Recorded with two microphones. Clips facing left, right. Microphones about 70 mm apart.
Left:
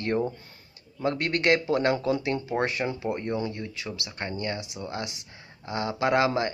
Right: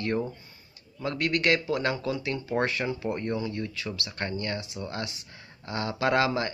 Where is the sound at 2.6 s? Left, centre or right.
Centre.